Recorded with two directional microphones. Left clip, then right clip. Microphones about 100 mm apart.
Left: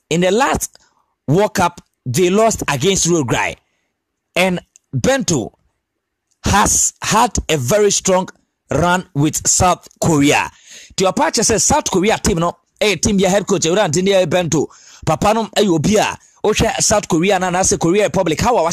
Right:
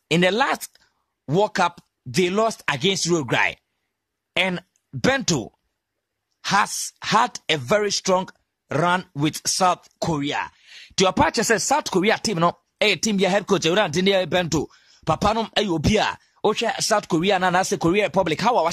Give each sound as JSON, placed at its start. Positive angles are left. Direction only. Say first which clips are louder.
{"t": 0.1, "sound": "a woman's voice", "louder": "left 5 dB", "side_deg": 50}
{"t": 3.3, "sound": "speech", "louder": "left 3 dB", "side_deg": 60}
{"t": 4.6, "sound": "speech", "louder": "left 6 dB", "side_deg": 40}
{"t": 6.4, "sound": "speech", "louder": "left 7 dB", "side_deg": 65}
{"t": 8.3, "sound": "a sound", "louder": "left 7 dB", "side_deg": 50}
{"t": 9.2, "sound": "speech", "louder": "left 5 dB", "side_deg": 45}
{"t": 10.5, "sound": "a sound", "louder": "left 4 dB", "side_deg": 45}
{"t": 11.0, "sound": "speech", "louder": "left 4 dB", "side_deg": 30}
{"t": 11.4, "sound": "speech", "louder": "left 5 dB", "side_deg": 45}